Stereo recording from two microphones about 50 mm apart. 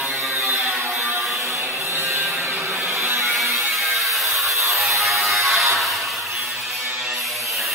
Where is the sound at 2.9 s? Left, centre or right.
Right.